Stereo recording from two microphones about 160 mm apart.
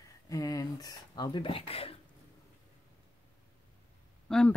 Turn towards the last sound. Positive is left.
turn(degrees=5)  # may be behind; listen again after turning